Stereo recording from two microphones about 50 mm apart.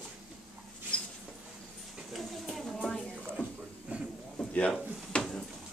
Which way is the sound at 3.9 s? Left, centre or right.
Right.